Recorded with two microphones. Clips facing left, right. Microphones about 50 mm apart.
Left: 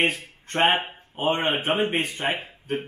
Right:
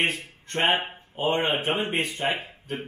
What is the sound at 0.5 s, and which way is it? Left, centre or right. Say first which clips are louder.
Speech: left 2 dB; left.